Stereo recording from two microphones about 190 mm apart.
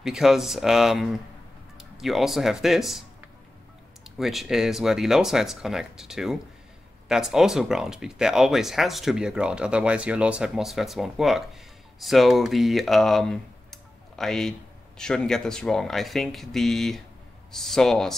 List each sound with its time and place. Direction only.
0.0 s speech: centre (ahead or behind)
4.0 s speech: centre (ahead or behind)